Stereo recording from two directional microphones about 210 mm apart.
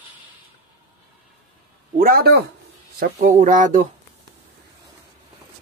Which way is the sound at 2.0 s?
45° right (ahead or behind).